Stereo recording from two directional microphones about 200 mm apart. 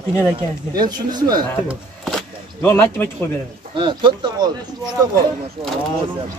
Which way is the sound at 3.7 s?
25° right (ahead or behind).